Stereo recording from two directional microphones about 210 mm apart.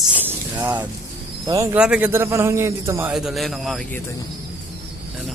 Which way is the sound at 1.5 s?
10° right (ahead or behind).